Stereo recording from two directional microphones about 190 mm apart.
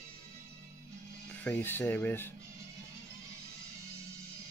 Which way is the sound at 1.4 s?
10° left (ahead or behind).